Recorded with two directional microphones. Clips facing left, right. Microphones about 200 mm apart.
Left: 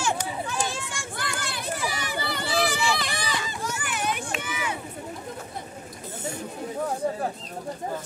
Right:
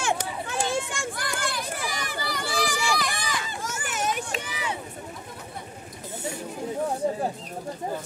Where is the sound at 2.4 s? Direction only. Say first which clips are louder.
Left 3 dB; 50° right (ahead or behind).